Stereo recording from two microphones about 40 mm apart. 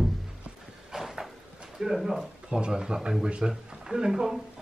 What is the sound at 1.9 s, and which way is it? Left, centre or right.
Speech, centre.